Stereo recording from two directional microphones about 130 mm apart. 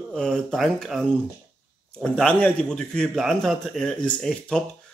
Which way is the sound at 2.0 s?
10° left (ahead or behind).